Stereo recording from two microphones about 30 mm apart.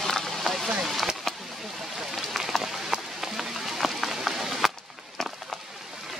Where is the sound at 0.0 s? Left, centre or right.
Centre.